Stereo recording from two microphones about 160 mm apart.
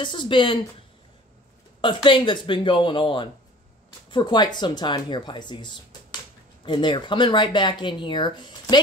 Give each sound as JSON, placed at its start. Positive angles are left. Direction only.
{"t": 0.0, "sound": "speech", "side_deg": 30}
{"t": 1.8, "sound": "speech", "side_deg": 30}